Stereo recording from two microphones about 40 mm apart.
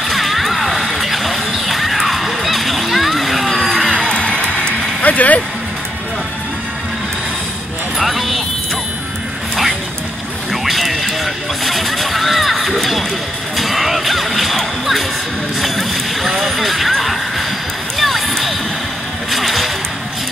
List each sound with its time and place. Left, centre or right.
0.0 s a sound: centre
4.1 s music: left
5.0 s vehicle: left
8.0 s music: centre
10.5 s a sound: centre
13.6 s music: centre
15.6 s horse: centre
17.9 s music: centre